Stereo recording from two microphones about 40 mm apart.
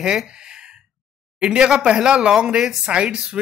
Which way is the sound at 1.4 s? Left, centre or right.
Right.